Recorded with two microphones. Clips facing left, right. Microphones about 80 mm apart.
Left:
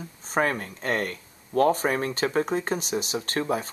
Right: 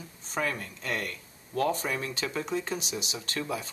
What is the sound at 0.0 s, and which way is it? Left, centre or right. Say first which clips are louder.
Speech: left 7 dB; left.